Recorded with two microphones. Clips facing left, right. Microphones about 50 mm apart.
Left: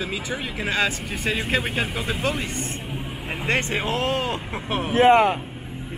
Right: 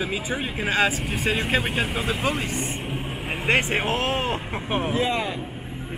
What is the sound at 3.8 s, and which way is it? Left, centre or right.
Speech, right.